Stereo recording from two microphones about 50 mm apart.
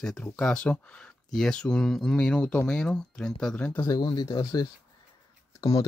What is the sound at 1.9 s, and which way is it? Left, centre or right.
Speech, centre.